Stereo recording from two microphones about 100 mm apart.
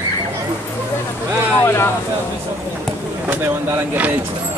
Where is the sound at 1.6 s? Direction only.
25° left (ahead or behind).